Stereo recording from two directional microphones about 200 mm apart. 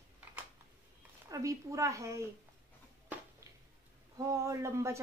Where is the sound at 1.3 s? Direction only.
15° right (ahead or behind).